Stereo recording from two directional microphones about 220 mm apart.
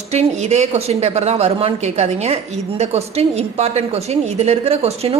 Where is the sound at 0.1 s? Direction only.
30° right (ahead or behind).